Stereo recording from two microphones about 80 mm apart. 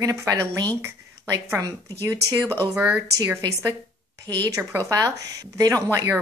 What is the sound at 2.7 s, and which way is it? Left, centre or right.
Speech, centre.